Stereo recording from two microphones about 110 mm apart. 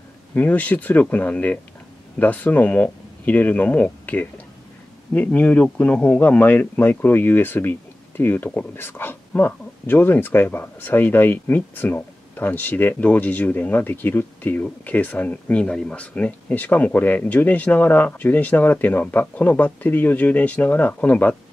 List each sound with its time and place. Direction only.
0.3 s speech: 15° left (ahead or behind)